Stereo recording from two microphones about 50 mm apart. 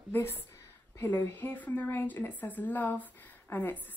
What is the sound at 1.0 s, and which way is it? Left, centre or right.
A woman's voice, left.